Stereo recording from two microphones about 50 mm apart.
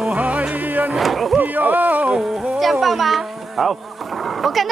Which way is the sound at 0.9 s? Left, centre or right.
Centre.